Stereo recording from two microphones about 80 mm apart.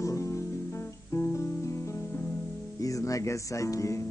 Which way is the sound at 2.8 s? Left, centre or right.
Left.